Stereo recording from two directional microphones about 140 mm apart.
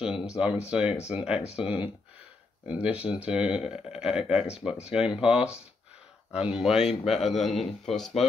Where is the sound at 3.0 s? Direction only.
45° left (ahead or behind).